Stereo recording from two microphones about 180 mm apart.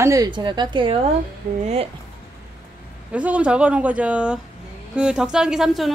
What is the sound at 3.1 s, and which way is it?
Speech, 5° right (ahead or behind).